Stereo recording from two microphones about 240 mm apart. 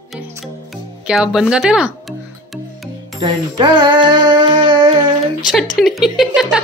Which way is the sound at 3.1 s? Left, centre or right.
Right.